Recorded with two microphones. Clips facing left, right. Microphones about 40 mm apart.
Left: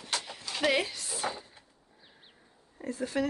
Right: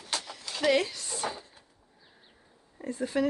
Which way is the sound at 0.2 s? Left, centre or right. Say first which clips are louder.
Right 2 dB; centre.